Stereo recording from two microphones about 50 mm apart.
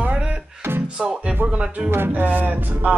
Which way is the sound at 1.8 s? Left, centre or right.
Right.